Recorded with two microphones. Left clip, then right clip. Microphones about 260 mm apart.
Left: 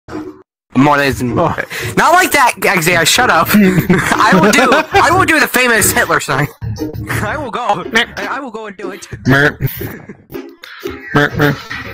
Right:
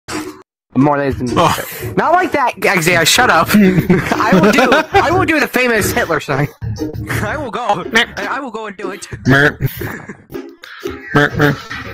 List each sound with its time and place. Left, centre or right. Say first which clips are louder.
0.7 s speech: left 3 dB; left
1.3 s speech: right 2 dB; right
1.6 s speech: left 4 dB; left
2.6 s speech: left 1 dB; centre
3.9 s speech: left 6 dB; left
4.6 s a man's voice: left 1 dB; centre
5.0 s speech: left 3 dB; left
7.1 s a man's voice: left 2 dB; centre
9.2 s a man's voice: even; centre
10.3 s a sound: left 2 dB; centre